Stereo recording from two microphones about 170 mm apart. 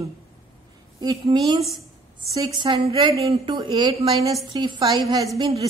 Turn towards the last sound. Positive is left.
turn(degrees=-20)  # may be behind; listen again after turning